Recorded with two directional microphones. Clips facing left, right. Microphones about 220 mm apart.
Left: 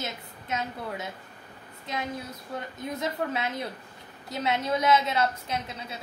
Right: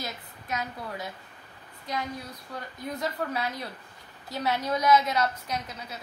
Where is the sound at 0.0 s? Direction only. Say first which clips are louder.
Left 2 dB; 25° left (ahead or behind).